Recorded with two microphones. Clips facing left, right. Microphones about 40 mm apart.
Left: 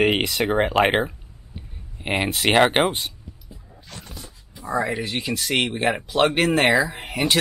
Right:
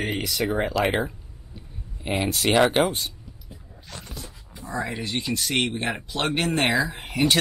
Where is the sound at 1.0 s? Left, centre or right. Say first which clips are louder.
Even; left.